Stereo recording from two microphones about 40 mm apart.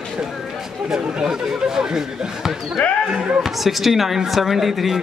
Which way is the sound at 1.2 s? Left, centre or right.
Centre.